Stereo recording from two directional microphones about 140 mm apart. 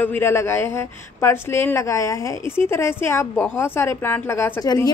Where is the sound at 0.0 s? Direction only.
15° left (ahead or behind).